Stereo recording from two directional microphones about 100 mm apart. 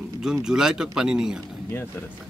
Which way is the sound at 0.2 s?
5° right (ahead or behind).